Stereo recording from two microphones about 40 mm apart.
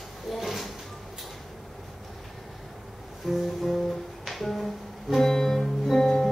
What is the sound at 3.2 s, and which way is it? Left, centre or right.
Music, centre.